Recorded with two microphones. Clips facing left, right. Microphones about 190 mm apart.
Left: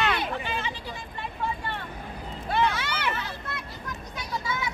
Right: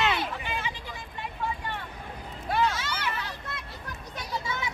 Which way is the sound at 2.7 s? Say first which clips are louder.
Left 2 dB; 60° left (ahead or behind).